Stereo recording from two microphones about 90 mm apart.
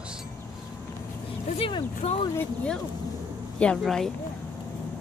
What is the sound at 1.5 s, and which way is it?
Speech, 75° left (ahead or behind).